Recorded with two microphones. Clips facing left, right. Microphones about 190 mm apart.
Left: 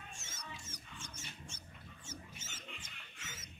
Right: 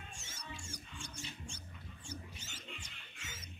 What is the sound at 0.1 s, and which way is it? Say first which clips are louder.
Music: right 1 dB; 15° right (ahead or behind).